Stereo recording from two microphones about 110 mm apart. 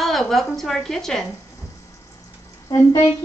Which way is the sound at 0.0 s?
Centre (ahead or behind).